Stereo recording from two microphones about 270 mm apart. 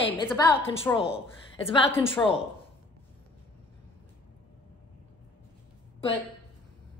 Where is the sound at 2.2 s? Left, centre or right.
Centre.